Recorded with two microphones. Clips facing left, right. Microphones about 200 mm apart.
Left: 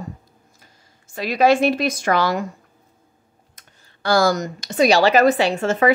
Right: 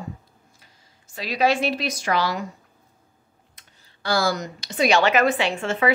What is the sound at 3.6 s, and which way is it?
Speech, 45° left (ahead or behind).